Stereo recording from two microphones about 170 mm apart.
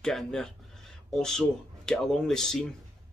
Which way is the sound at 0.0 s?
5° left (ahead or behind).